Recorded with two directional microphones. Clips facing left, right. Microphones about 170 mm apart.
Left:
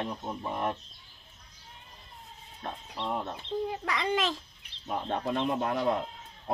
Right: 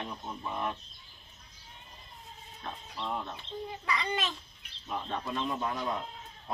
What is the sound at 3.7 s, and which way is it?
Speech, 85° left.